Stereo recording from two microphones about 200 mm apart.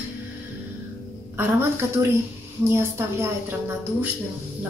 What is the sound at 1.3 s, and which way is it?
A woman's voice, 10° right (ahead or behind).